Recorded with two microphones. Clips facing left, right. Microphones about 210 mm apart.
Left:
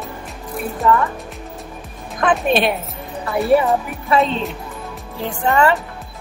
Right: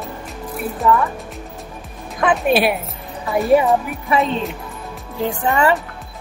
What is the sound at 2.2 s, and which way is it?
Speech, 5° right (ahead or behind).